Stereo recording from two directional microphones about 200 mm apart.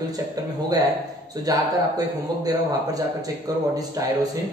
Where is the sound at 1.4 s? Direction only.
20° right (ahead or behind).